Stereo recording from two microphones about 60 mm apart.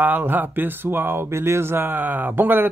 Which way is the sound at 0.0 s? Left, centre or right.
Right.